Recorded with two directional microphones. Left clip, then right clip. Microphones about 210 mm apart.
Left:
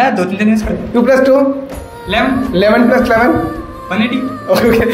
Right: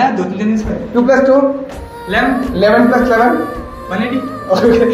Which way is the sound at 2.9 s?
50° left (ahead or behind).